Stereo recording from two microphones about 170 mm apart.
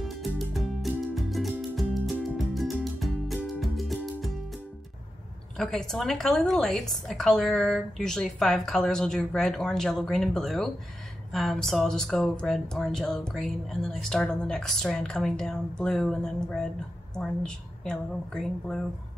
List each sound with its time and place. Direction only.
0.2 s music: centre (ahead or behind)
5.6 s speech: centre (ahead or behind)